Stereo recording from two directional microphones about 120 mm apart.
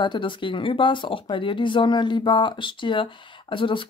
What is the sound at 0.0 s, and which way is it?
Speech, 40° left (ahead or behind).